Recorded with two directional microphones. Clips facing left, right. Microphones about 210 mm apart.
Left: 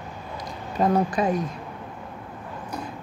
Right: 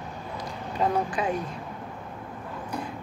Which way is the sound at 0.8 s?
45° left (ahead or behind).